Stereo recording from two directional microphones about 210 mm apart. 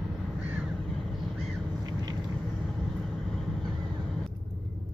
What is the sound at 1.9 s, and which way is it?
Vehicle, 20° right (ahead or behind).